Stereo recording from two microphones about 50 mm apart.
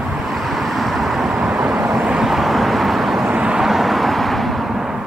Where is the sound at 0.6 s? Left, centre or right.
Centre.